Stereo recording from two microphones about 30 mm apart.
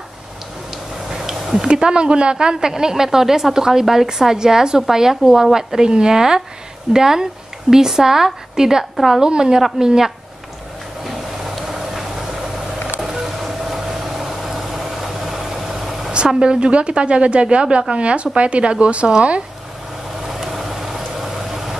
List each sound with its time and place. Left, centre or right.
1.1 s a sound: centre
1.7 s speech: right
2.3 s a woman's voice: right
8.9 s a woman's voice: centre
9.2 s speech: right
11.1 s vehicle: centre
16.3 s speech: right
20.3 s vehicle: centre